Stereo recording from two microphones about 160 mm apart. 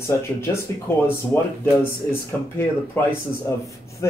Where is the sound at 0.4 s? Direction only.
15° left (ahead or behind).